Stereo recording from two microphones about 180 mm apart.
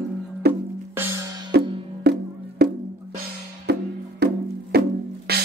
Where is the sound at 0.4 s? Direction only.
65° right (ahead or behind).